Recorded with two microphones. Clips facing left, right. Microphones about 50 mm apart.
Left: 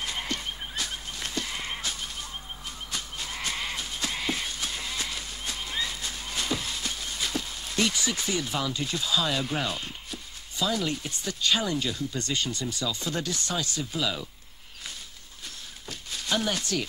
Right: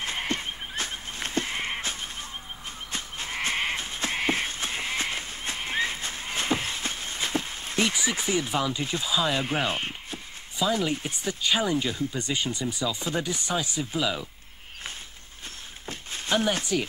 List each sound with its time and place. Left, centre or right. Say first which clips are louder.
0.3 s a sound: right 2 dB; right
2.9 s livestock: right 2 dB; right
3.4 s sheep: right 5 dB; right
4.2 s horse: right 6 dB; right; by 9.3 s centre
9.4 s speech: right 3 dB; right
10.7 s speech: right 4 dB; centre
15.9 s a sound: right 3 dB; right
16.7 s speech: right 3 dB; centre